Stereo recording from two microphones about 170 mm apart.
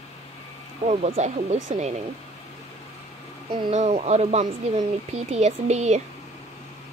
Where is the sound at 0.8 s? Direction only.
40° right (ahead or behind).